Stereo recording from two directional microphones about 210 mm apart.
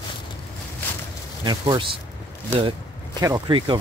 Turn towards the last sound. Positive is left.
turn(degrees=-20)  # may be behind; listen again after turning